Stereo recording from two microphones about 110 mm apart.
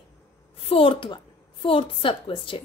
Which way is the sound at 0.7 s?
55° left (ahead or behind).